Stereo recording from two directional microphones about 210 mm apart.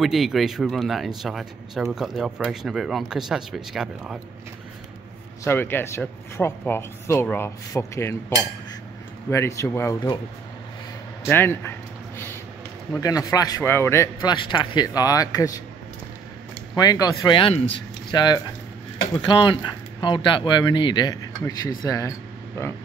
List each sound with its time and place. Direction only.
0.0 s speech: centre (ahead or behind)
5.4 s speech: 10° left (ahead or behind)
9.3 s speech: 15° left (ahead or behind)
11.2 s speech: 10° left (ahead or behind)
12.9 s speech: 15° left (ahead or behind)
16.7 s speech: 15° left (ahead or behind)